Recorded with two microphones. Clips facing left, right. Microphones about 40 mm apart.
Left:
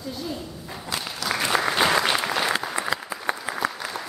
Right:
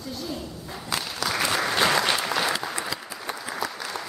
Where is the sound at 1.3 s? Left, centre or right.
Centre.